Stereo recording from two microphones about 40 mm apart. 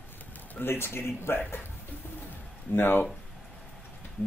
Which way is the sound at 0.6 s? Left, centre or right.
Left.